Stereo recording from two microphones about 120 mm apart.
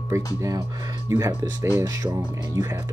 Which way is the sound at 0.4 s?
25° right (ahead or behind).